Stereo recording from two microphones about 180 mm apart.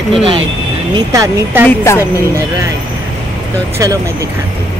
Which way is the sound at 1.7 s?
15° left (ahead or behind).